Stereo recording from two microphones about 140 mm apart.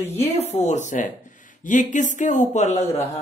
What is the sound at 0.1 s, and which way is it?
Speech, 50° left (ahead or behind).